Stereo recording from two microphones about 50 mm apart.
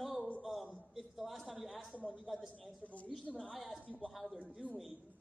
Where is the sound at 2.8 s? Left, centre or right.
Left.